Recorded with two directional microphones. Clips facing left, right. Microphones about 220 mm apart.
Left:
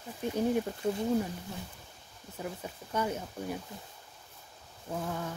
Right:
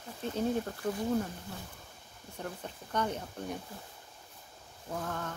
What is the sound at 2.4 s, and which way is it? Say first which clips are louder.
Speech: left 2 dB; 5° left (ahead or behind).